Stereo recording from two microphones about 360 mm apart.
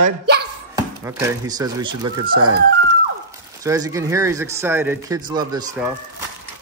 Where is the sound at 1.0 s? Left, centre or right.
Centre.